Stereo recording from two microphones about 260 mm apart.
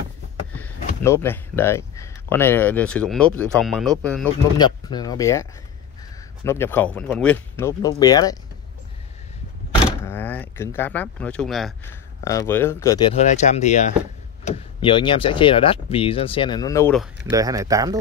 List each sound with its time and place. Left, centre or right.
1.0 s speech: centre
4.6 s speech: centre
10.0 s speech: centre
12.3 s speech: centre
17.3 s speech: centre